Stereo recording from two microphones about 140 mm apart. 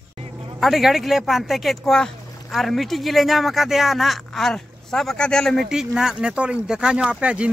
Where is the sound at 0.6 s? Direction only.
Centre (ahead or behind).